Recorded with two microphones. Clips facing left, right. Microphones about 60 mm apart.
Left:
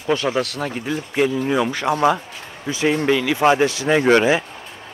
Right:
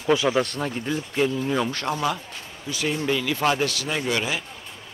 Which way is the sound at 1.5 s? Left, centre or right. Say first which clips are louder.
Left 5 dB; centre.